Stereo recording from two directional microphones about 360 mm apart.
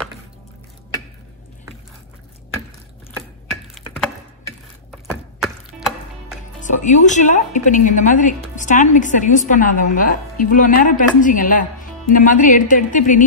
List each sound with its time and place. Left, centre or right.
5.4 s music: centre
6.6 s a woman's voice: centre